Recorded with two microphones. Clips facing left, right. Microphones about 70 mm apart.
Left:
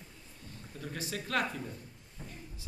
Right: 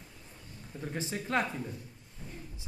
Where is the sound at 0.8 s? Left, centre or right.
Right.